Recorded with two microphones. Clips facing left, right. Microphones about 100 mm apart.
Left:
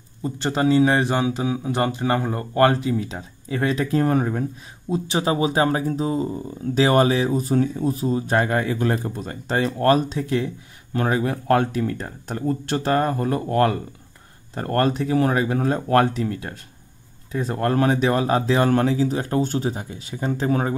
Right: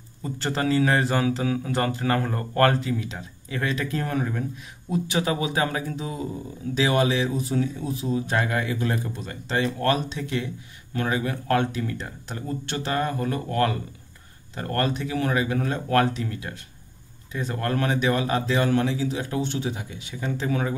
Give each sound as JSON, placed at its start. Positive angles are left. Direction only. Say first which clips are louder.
{"t": 0.2, "sound": "speech", "louder": "left 5 dB", "side_deg": 20}
{"t": 3.0, "sound": "speech", "louder": "left 4 dB", "side_deg": 35}